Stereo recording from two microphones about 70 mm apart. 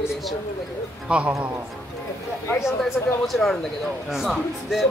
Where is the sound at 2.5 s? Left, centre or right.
Left.